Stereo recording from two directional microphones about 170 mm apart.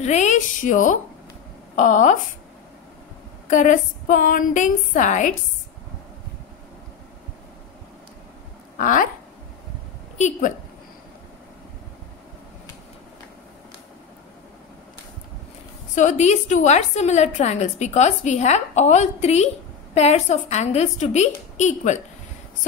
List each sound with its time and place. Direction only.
0.0 s a woman's voice: 45° left (ahead or behind)
3.4 s a woman's voice: 45° left (ahead or behind)
8.7 s speech: 50° left (ahead or behind)
10.1 s a woman's voice: 45° left (ahead or behind)
15.9 s a woman's voice: 45° left (ahead or behind)